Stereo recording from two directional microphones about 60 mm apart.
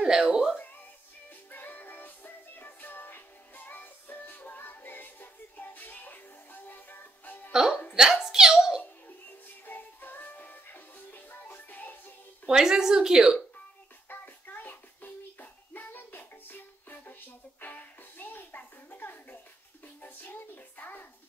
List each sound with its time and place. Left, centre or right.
0.0 s speech: centre
1.5 s music: left
7.9 s a sound: centre
9.7 s music: left
12.4 s speech: centre
14.0 s child singing: left
20.0 s music: left